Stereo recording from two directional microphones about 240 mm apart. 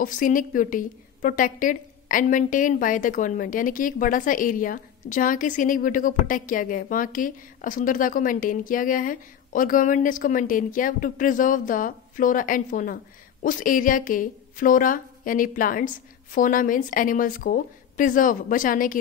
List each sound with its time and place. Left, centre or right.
0.0 s a woman's voice: left